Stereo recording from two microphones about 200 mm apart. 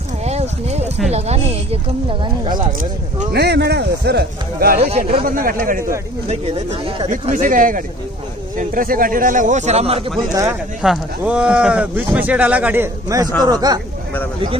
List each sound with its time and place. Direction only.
0.2 s a sound: 35° right (ahead or behind)
1.1 s speech: 30° right (ahead or behind)
3.3 s speech: 55° right (ahead or behind)
4.7 s speech: 30° right (ahead or behind)
5.2 s speech: 45° right (ahead or behind)
6.2 s speech: 30° right (ahead or behind)
7.1 s speech: 40° right (ahead or behind)
10.8 s speech: 5° right (ahead or behind)